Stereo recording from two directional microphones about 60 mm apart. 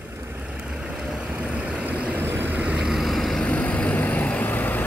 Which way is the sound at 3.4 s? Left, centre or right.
Left.